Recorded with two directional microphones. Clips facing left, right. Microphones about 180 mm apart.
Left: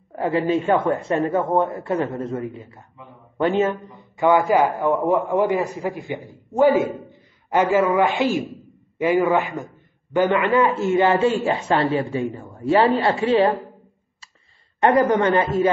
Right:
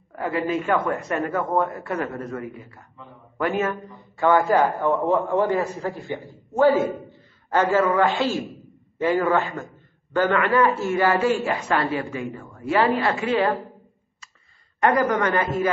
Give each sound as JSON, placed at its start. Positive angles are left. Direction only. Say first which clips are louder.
{"t": 0.1, "sound": "a man's voice", "louder": "left 4 dB", "side_deg": 30}
{"t": 14.8, "sound": "a man's voice", "louder": "left 3 dB", "side_deg": 30}